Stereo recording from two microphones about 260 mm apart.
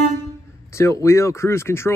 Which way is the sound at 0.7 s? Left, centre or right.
Centre.